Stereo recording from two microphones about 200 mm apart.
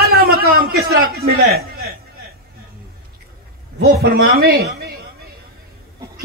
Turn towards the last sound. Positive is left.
turn(degrees=-50)  # may be behind; listen again after turning